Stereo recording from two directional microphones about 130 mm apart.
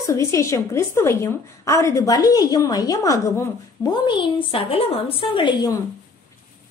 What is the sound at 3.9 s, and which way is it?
A woman's voice, 40° left (ahead or behind).